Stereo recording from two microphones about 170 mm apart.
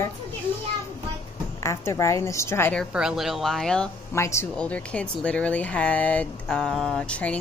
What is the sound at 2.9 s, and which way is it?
Speech, 5° right (ahead or behind).